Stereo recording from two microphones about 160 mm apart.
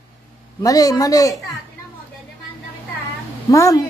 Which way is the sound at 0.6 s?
20° left (ahead or behind).